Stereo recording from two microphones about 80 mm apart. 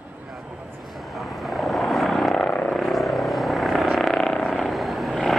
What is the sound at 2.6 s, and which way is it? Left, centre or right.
Vehicle, centre.